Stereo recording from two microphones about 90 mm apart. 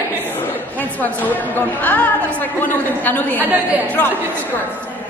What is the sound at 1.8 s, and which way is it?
Speech, 20° left (ahead or behind).